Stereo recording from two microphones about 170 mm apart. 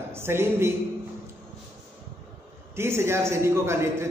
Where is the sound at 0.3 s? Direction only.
15° right (ahead or behind).